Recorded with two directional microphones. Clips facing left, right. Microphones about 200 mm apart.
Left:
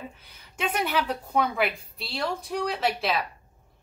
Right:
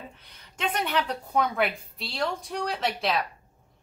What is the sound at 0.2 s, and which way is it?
A woman's voice, 5° left (ahead or behind).